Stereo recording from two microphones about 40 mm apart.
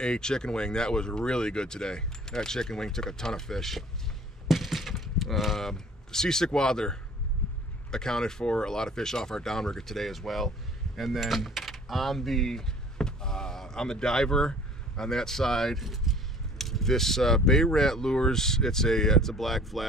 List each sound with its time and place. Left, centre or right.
0.0 s speech: centre
4.5 s a sound: centre
7.9 s speech: centre